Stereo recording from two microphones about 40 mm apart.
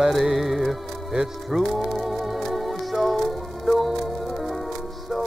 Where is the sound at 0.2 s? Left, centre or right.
Centre.